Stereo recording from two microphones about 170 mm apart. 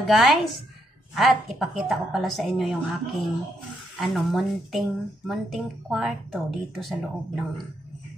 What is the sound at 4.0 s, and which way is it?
Speech, centre (ahead or behind).